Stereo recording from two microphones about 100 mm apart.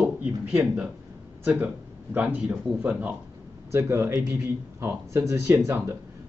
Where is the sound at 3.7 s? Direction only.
25° right (ahead or behind).